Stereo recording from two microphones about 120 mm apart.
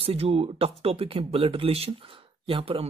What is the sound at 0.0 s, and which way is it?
Speech, 55° right (ahead or behind).